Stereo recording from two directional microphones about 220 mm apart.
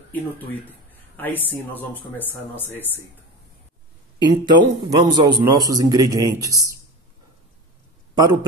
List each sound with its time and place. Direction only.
0.1 s speech: 10° left (ahead or behind)
4.5 s a man's voice: 20° right (ahead or behind)
8.2 s a man's voice: 20° right (ahead or behind)